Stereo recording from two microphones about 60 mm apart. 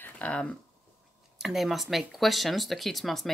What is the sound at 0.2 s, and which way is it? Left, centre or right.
Speech, centre.